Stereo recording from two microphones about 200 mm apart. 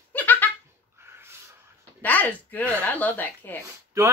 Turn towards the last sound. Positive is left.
turn(degrees=-15)  # may be behind; listen again after turning